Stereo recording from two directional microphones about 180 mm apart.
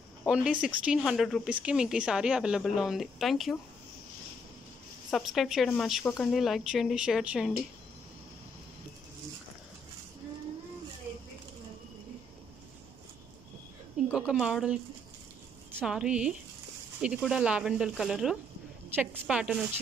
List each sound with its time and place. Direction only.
0.3 s speech: 5° right (ahead or behind)
5.1 s speech: centre (ahead or behind)
13.9 s a sound: 5° right (ahead or behind)
15.8 s speech: 5° right (ahead or behind)